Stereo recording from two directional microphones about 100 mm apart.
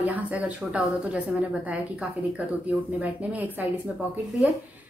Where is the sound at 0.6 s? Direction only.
5° right (ahead or behind).